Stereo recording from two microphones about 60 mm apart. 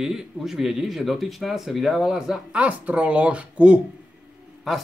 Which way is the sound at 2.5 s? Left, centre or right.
Right.